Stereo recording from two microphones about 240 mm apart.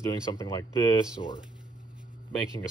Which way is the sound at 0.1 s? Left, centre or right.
Centre.